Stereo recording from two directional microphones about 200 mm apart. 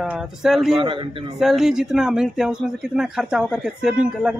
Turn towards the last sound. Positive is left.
turn(degrees=-5)  # may be behind; listen again after turning